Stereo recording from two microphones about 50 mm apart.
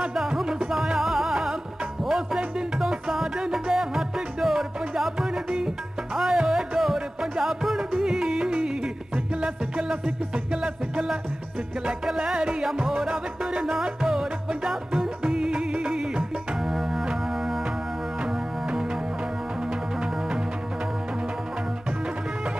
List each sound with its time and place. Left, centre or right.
0.1 s music: centre
7.9 s music: centre
16.6 s music: centre
19.7 s music: centre